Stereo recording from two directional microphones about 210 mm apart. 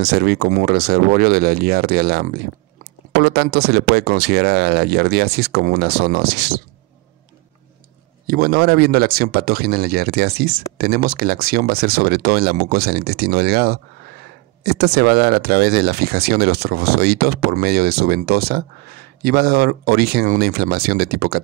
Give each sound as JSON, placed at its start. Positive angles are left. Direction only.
{"t": 0.0, "sound": "speech", "side_deg": -50}
{"t": 8.3, "sound": "speech", "side_deg": -45}